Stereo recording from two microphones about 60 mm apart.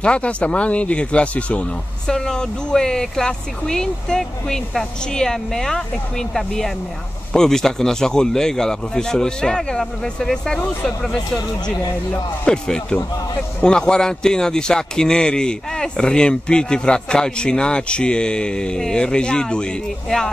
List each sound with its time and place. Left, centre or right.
0.0 s speech: centre
2.1 s a man's voice: centre
12.4 s a man's voice: centre